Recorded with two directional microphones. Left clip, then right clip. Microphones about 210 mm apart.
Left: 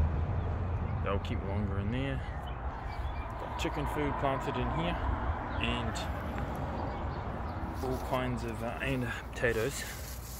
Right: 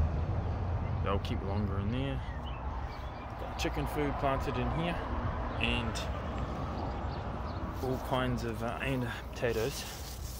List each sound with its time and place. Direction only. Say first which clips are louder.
1.0 s speech: even; 10° right (ahead or behind)
1.9 s speech: left 2 dB; 5° left (ahead or behind)
4.0 s speech: right 1 dB; 5° right (ahead or behind)
8.1 s speech: right 2 dB; 15° right (ahead or behind)
8.8 s speech: left 1 dB; centre (ahead or behind)